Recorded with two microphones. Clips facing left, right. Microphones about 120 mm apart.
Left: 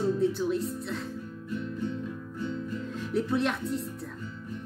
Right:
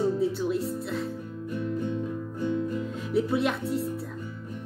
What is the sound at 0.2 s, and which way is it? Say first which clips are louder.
Speech: even; centre (ahead or behind).